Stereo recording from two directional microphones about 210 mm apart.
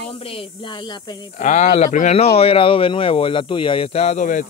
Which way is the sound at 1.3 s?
35° left (ahead or behind).